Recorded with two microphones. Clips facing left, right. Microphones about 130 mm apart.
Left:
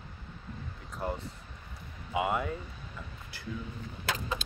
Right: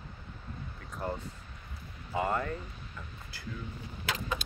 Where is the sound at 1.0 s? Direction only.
15° left (ahead or behind).